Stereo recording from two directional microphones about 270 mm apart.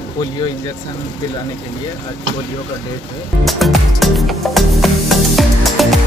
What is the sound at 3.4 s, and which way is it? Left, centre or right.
Music, centre.